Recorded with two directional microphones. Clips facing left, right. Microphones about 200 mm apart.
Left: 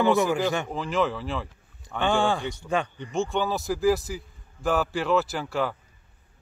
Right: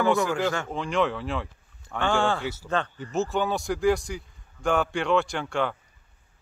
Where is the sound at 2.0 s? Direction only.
15° left (ahead or behind).